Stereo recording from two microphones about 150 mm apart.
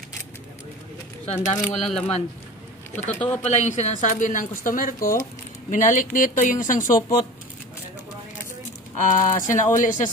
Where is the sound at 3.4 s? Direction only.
50° left (ahead or behind).